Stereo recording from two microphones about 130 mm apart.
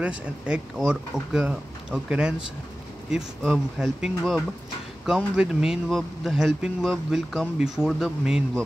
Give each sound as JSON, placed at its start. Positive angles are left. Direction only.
{"t": 0.0, "sound": "speech", "side_deg": -10}